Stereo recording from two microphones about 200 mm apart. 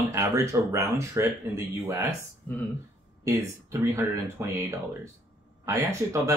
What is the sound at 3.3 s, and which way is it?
Speech, 15° right (ahead or behind).